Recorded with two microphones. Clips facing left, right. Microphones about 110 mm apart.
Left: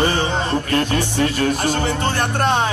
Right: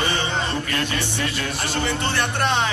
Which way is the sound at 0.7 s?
45° left (ahead or behind).